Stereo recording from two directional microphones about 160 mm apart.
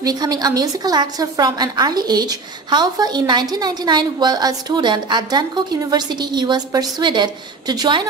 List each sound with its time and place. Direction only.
0.0 s a woman's voice: 25° right (ahead or behind)